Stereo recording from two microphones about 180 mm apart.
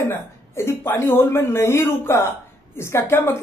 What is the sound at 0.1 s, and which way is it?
A woman's voice, 15° left (ahead or behind).